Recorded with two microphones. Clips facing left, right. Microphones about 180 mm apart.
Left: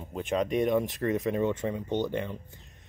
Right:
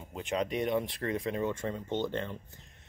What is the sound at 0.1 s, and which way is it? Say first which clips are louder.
Speech: left 4 dB; 20° right (ahead or behind).